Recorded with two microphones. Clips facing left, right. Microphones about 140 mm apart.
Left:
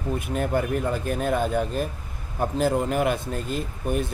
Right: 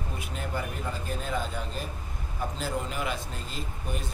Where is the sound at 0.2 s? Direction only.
55° left (ahead or behind).